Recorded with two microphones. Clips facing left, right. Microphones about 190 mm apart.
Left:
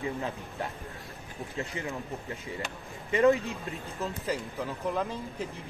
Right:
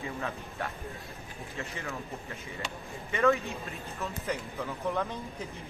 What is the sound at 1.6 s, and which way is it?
Speech, 15° left (ahead or behind).